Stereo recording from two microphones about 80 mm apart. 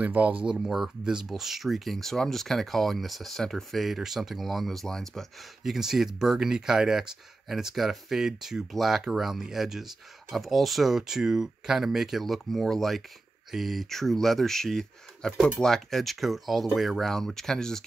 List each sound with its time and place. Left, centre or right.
0.0 s speech: centre
0.5 s speech: centre
5.6 s speech: centre